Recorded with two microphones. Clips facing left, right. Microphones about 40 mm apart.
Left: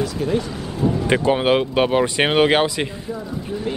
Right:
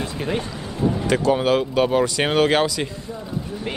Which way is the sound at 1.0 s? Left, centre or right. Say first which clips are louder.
Left 1 dB; left.